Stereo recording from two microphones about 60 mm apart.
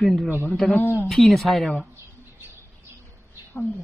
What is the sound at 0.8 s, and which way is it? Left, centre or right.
Speech, left.